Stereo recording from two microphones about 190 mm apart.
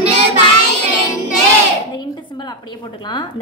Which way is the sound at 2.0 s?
25° left (ahead or behind).